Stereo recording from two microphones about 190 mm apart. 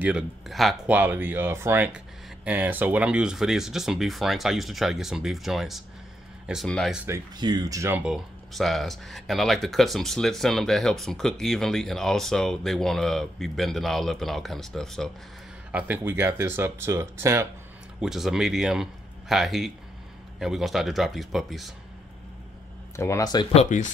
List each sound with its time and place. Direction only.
0.0 s speech: 5° right (ahead or behind)
7.1 s speech: 20° right (ahead or behind)
8.0 s speech: centre (ahead or behind)
15.7 s speech: 10° right (ahead or behind)
18.0 s speech: centre (ahead or behind)
22.9 s speech: 15° left (ahead or behind)
23.5 s speech: 40° left (ahead or behind)